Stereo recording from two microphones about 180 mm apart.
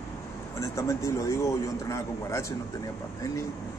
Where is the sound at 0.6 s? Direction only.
15° left (ahead or behind).